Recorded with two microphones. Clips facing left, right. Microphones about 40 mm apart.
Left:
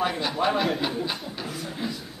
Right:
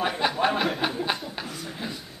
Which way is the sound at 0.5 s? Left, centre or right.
Centre.